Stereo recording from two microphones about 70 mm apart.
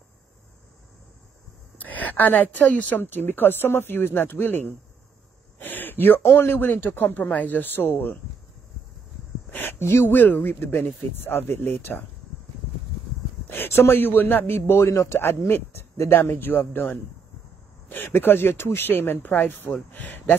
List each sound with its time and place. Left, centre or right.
1.8 s a woman's voice: left
5.6 s a sound: left
6.3 s a woman's voice: left
9.5 s a man's voice: left
13.5 s a man's voice: left